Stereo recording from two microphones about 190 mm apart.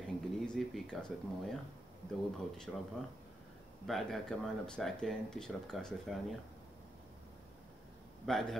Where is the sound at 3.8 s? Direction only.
Centre (ahead or behind).